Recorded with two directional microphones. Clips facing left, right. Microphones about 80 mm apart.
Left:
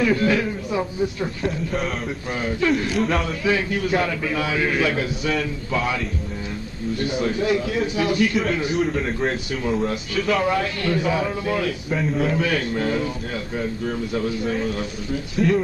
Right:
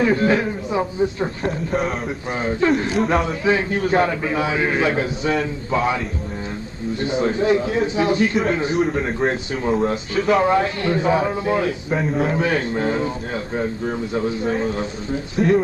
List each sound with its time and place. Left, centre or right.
0.0 s a man's voice: right
15.3 s speech: right